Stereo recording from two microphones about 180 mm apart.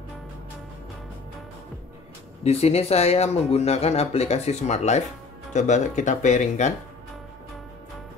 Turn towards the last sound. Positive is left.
turn(degrees=40)  # may be behind; listen again after turning